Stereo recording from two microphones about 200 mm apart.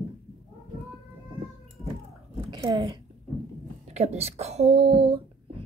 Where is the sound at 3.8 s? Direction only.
35° right (ahead or behind).